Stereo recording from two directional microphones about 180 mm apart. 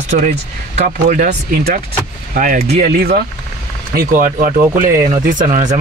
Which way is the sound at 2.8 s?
60° right (ahead or behind).